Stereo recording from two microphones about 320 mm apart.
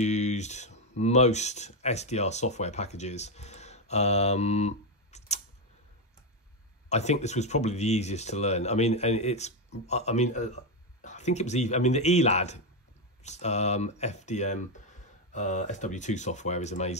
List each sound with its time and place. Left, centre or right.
0.0 s speech: left
6.9 s speech: left